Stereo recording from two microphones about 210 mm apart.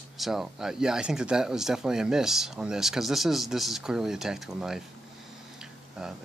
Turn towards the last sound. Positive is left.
turn(degrees=-5)  # may be behind; listen again after turning